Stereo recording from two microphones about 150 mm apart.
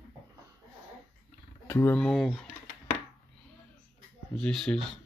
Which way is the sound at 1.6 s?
15° left (ahead or behind).